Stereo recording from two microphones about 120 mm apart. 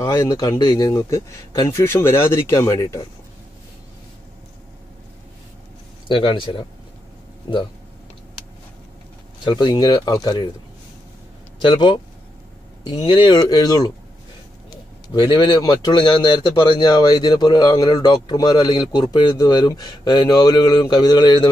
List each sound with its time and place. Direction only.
0.0 s speech: 25° left (ahead or behind)
6.0 s a man's voice: 45° left (ahead or behind)
9.4 s speech: 40° left (ahead or behind)
11.6 s speech: 40° left (ahead or behind)
15.1 s speech: 40° left (ahead or behind)